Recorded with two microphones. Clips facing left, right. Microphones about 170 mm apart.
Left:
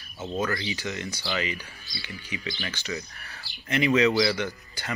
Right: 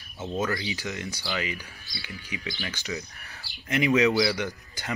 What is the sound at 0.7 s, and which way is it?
Speech, centre (ahead or behind).